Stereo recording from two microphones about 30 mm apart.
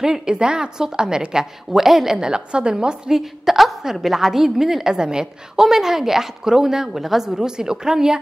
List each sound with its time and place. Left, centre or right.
0.0 s a woman's voice: right
2.1 s a woman's voice: right
3.1 s a woman's voice: centre
4.9 s a woman's voice: right
5.6 s a woman's voice: centre
7.4 s a woman's voice: right